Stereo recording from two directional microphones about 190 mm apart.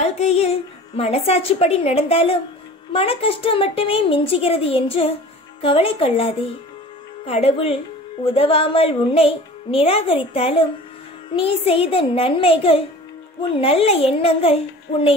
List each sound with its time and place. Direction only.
0.0 s music: 35° left (ahead or behind)
0.9 s a woman's voice: 30° left (ahead or behind)